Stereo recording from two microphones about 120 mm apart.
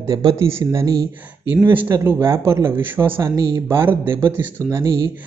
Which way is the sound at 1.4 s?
15° right (ahead or behind).